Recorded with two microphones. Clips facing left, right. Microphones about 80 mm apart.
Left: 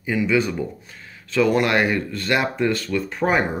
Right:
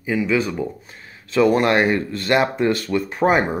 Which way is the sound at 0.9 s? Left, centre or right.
Right.